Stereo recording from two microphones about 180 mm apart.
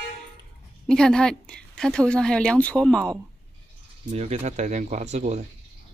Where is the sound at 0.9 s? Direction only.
5° left (ahead or behind).